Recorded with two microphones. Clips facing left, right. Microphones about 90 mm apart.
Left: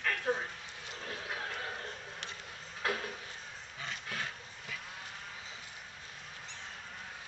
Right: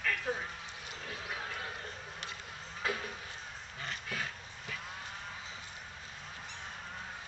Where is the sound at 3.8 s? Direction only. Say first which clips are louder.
Right 1 dB; centre (ahead or behind).